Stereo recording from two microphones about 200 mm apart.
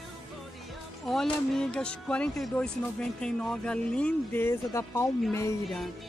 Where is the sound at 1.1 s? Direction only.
Centre (ahead or behind).